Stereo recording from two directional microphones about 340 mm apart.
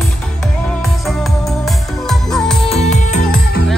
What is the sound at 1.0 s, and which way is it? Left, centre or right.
Music, centre.